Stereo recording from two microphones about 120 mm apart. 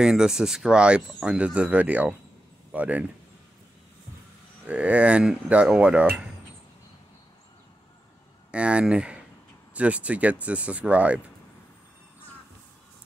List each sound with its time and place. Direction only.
0.0 s speech: 5° right (ahead or behind)
4.6 s speech: 10° right (ahead or behind)
8.5 s speech: 10° right (ahead or behind)